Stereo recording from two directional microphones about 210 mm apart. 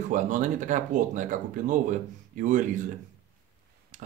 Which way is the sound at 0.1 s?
35° right (ahead or behind).